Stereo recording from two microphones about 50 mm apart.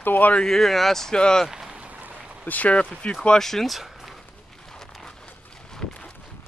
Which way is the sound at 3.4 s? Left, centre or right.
Centre.